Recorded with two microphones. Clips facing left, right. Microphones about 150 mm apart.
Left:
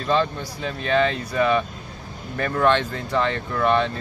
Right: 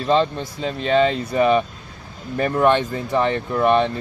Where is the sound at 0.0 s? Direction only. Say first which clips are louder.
Right 3 dB; 20° right (ahead or behind).